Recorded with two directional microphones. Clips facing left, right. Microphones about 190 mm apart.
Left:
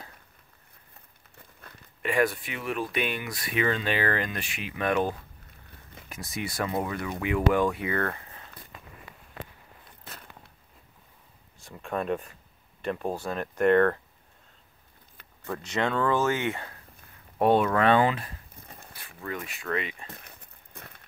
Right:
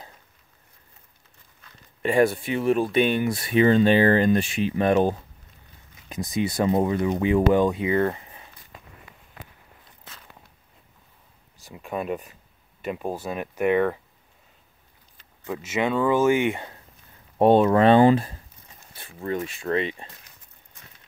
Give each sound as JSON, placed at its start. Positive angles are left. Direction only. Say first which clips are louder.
{"t": 2.0, "sound": "speech", "louder": "right 6 dB", "side_deg": -30}
{"t": 6.0, "sound": "speech", "louder": "right 9 dB", "side_deg": -20}
{"t": 11.6, "sound": "speech", "louder": "right 1 dB", "side_deg": -5}
{"t": 15.4, "sound": "speech", "louder": "right 3 dB", "side_deg": -5}
{"t": 17.4, "sound": "speech", "louder": "right 6 dB", "side_deg": -25}
{"t": 20.1, "sound": "walk", "louder": "left 5 dB", "side_deg": 60}